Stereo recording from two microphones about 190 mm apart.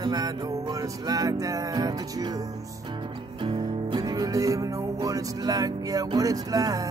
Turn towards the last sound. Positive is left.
turn(degrees=-20)  # may be behind; listen again after turning